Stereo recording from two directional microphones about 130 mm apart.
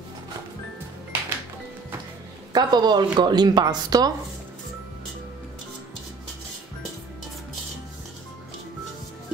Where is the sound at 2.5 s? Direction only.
35° right (ahead or behind).